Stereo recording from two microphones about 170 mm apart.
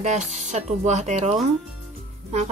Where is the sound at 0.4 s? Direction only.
45° right (ahead or behind).